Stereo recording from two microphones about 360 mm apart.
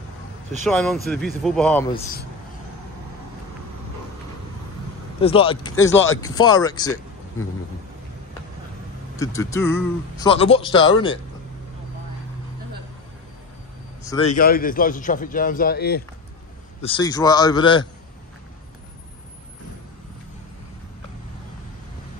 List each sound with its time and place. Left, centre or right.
0.7 s speech: centre
5.2 s speech: centre
9.2 s speech: centre
14.3 s a man's voice: left
16.8 s speech: centre